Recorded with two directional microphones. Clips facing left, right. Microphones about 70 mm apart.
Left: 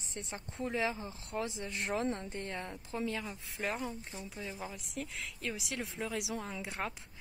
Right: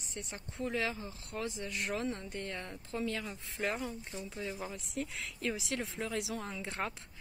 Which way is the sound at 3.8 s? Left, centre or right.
Centre.